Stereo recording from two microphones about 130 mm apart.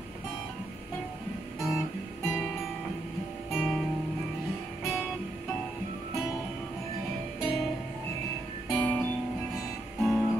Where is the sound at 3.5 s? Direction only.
5° left (ahead or behind).